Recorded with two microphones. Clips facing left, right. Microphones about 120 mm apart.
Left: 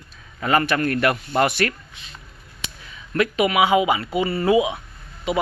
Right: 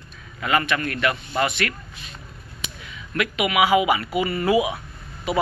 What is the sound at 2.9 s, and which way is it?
A man's voice, 35° left (ahead or behind).